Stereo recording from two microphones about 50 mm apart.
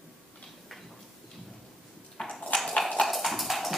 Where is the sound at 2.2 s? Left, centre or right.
Centre.